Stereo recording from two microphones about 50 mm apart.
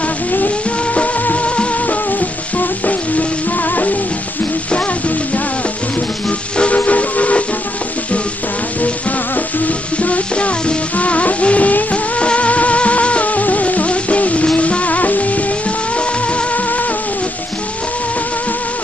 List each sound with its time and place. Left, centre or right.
1.2 s music: left
6.8 s steam whistle: left
10.0 s music: left